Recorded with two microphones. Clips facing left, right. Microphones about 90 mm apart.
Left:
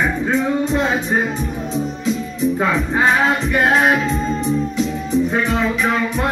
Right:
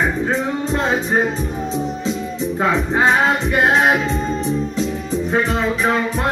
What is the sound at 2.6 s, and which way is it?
Music, 25° right (ahead or behind).